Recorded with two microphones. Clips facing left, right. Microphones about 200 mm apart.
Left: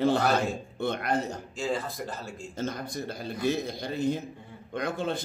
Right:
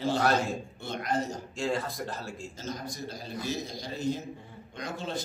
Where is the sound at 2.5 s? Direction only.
60° left (ahead or behind).